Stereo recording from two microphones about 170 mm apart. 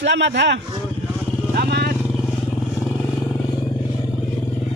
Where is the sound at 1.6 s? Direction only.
70° right (ahead or behind).